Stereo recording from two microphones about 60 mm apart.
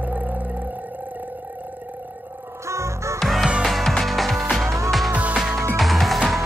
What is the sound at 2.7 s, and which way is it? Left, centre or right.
Music, right.